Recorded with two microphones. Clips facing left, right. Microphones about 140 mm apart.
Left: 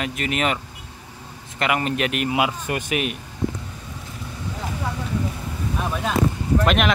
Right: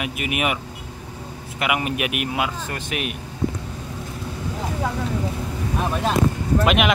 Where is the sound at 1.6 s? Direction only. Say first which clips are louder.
Left 1 dB; 10° right (ahead or behind).